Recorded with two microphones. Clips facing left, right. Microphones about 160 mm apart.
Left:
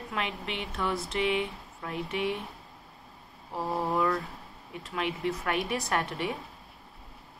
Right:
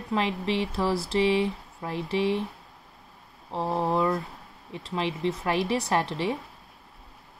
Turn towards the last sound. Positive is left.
turn(degrees=-30)  # may be behind; listen again after turning